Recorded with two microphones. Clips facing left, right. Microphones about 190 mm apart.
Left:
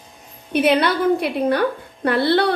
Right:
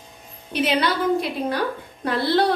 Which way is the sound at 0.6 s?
60° left (ahead or behind).